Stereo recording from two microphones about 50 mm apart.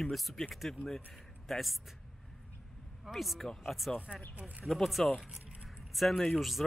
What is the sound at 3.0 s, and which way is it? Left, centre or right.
Speech, centre.